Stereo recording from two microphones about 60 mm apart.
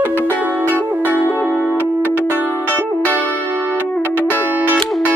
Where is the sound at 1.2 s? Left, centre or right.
Left.